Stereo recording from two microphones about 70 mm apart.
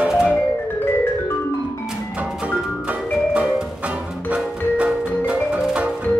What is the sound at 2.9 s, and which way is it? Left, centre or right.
Music, centre.